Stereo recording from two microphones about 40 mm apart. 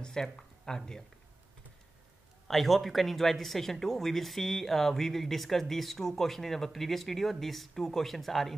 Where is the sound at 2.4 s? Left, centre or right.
Centre.